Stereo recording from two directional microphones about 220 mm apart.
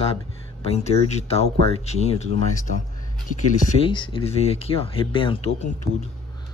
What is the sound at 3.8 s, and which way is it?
A man's voice, 20° left (ahead or behind).